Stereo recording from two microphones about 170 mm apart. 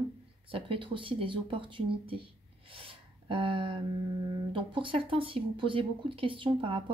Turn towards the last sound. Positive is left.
turn(degrees=-30)  # may be behind; listen again after turning